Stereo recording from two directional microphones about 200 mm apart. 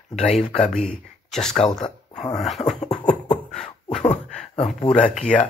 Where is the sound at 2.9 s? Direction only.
5° left (ahead or behind).